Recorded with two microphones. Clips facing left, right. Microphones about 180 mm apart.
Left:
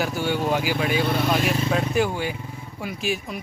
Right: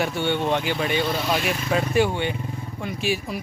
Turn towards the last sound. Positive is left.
turn(degrees=0)  # may be behind; listen again after turning